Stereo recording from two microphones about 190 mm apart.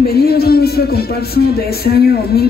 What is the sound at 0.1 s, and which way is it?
Speech, 55° left (ahead or behind).